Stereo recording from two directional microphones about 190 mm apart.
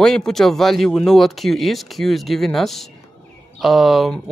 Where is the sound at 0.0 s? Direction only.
5° left (ahead or behind).